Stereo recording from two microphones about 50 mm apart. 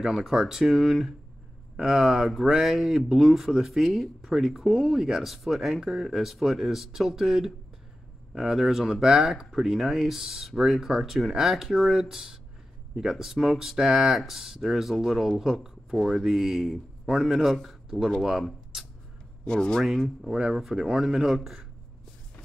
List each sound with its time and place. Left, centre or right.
0.0 s speech: centre
18.7 s a sound: centre
19.4 s speech: centre
19.8 s speech: centre
20.2 s speech: centre